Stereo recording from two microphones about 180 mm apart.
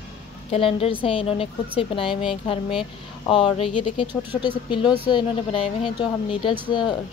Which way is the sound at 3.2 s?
30° left (ahead or behind).